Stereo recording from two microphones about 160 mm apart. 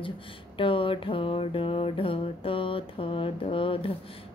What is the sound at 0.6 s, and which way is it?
Mantra, 35° left (ahead or behind).